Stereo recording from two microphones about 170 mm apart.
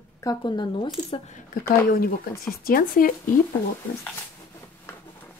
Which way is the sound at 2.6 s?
55° left (ahead or behind).